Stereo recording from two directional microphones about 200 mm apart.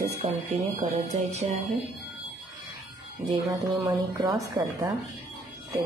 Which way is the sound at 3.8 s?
20° right (ahead or behind).